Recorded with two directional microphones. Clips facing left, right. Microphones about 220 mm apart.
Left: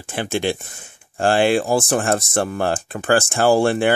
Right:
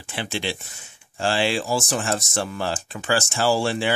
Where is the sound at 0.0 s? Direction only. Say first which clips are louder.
Left 7 dB; 50° left (ahead or behind).